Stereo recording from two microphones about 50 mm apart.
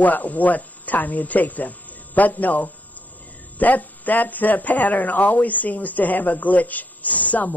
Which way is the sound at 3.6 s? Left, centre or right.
Left.